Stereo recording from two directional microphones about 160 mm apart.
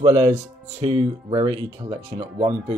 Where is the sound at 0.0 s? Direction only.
20° right (ahead or behind).